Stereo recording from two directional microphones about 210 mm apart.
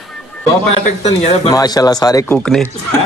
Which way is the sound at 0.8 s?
30° left (ahead or behind).